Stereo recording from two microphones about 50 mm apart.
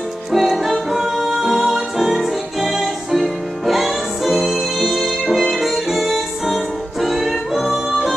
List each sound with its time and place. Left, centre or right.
0.3 s music: centre